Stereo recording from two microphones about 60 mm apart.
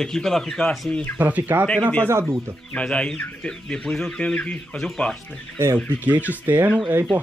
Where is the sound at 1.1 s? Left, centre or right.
Right.